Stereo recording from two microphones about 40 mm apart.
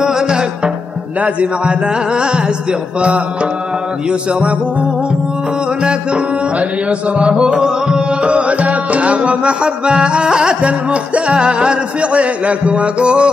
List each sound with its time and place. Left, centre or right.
0.0 s music: centre
1.2 s music: right
4.1 s music: right
6.9 s music: right
8.3 s music: right